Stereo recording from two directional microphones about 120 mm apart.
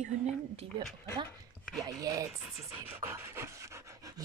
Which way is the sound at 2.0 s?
30° right (ahead or behind).